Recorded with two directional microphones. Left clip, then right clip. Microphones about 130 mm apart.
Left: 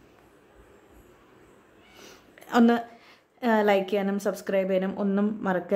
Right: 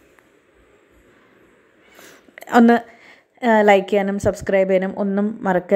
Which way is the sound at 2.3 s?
50° right (ahead or behind).